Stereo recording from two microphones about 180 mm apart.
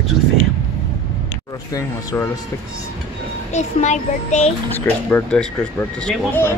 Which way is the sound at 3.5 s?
40° left (ahead or behind).